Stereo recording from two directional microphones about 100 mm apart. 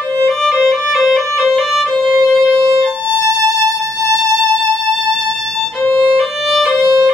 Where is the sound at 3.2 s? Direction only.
30° right (ahead or behind).